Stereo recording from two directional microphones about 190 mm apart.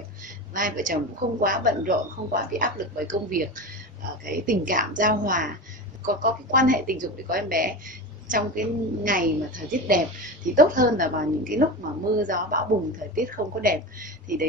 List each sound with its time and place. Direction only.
0.6 s speech: 45° right (ahead or behind)